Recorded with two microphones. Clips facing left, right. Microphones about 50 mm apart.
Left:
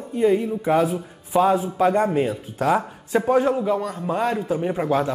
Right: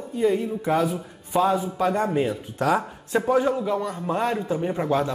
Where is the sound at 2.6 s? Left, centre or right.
Centre.